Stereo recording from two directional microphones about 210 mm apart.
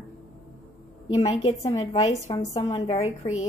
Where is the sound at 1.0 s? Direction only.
30° left (ahead or behind).